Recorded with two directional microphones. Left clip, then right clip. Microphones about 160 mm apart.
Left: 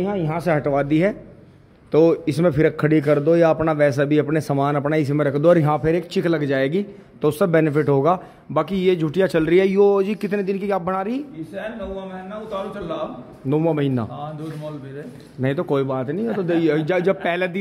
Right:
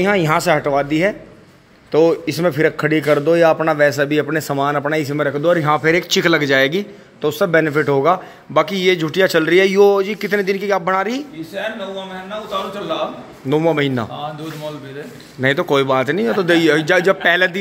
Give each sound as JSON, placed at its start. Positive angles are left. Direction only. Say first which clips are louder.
{"t": 0.4, "sound": "a man's voice", "louder": "right 4 dB", "side_deg": 15}
{"t": 5.8, "sound": "a man's voice", "louder": "right 6 dB", "side_deg": -5}
{"t": 7.2, "sound": "a man's voice", "louder": "right 3 dB", "side_deg": 20}
{"t": 9.9, "sound": "a man's voice", "louder": "right 3 dB", "side_deg": 15}
{"t": 10.3, "sound": "a man's voice", "louder": "right 7 dB", "side_deg": 5}
{"t": 13.5, "sound": "a man's voice", "louder": "right 4 dB", "side_deg": 0}
{"t": 15.4, "sound": "a man's voice", "louder": "right 6 dB", "side_deg": 0}
{"t": 15.9, "sound": "speech", "louder": "right 8 dB", "side_deg": -15}
{"t": 16.6, "sound": "a man's voice", "louder": "right 3 dB", "side_deg": 5}